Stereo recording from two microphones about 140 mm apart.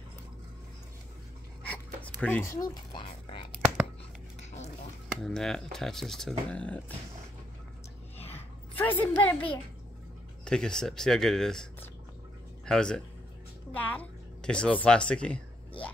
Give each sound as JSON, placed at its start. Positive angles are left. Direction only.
{"t": 2.2, "sound": "speech", "side_deg": 15}
{"t": 5.2, "sound": "speech", "side_deg": 5}
{"t": 8.7, "sound": "a sound", "side_deg": 15}
{"t": 10.4, "sound": "speech", "side_deg": 5}
{"t": 12.6, "sound": "speech", "side_deg": 5}